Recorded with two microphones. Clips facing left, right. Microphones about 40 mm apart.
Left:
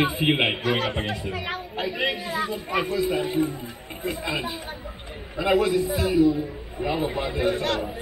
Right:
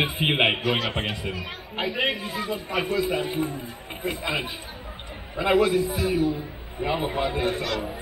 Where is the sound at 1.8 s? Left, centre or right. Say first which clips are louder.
Right 1 dB; right.